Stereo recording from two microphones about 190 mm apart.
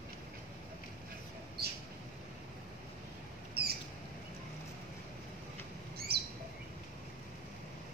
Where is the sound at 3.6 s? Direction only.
55° right (ahead or behind).